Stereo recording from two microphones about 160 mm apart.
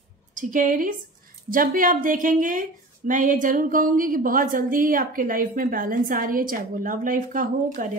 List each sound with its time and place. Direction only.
0.3 s a woman's voice: 55° right (ahead or behind)